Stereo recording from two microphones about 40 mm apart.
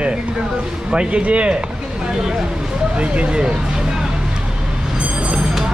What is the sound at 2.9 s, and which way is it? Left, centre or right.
Speech, right.